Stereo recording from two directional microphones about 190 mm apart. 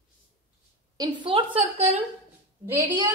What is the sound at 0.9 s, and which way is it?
Speech, 25° right (ahead or behind).